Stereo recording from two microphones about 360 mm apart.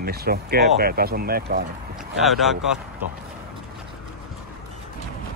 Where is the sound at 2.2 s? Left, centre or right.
Centre.